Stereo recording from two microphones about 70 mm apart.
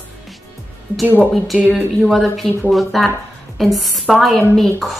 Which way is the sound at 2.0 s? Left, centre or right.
Centre.